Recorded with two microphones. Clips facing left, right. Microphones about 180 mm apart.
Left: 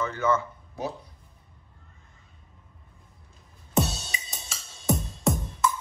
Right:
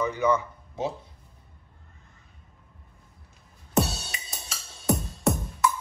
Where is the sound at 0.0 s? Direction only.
15° right (ahead or behind).